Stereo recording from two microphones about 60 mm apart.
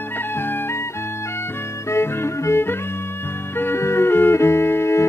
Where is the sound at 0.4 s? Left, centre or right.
Left.